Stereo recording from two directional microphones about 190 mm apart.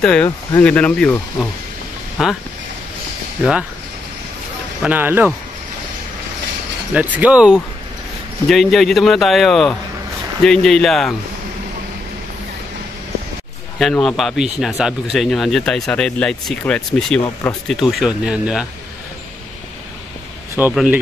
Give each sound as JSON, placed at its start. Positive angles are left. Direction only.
{"t": 0.0, "sound": "speech", "side_deg": 5}
{"t": 2.2, "sound": "speech", "side_deg": 0}
{"t": 4.8, "sound": "speech", "side_deg": -10}
{"t": 6.9, "sound": "speech", "side_deg": -10}
{"t": 13.7, "sound": "speech", "side_deg": 0}
{"t": 17.2, "sound": "speech", "side_deg": 15}
{"t": 17.6, "sound": "speech", "side_deg": 0}
{"t": 20.5, "sound": "speech", "side_deg": -5}